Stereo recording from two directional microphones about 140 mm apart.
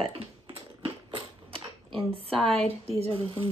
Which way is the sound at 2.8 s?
40° right (ahead or behind).